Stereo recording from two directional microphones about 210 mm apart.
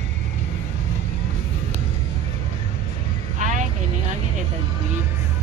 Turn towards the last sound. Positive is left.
turn(degrees=-35)  # may be behind; listen again after turning